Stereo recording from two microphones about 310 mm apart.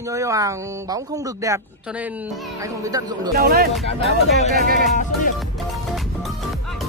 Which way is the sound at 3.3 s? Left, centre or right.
Right.